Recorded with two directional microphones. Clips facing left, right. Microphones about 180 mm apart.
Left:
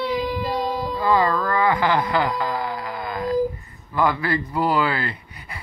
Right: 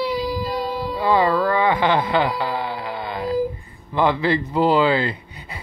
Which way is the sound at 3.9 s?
25° right (ahead or behind).